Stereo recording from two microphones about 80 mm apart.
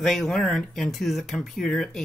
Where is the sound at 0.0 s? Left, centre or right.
Centre.